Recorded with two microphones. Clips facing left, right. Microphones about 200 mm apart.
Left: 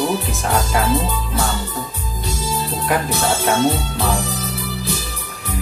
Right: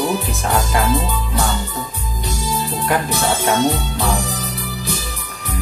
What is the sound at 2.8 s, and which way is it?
Speech, centre (ahead or behind).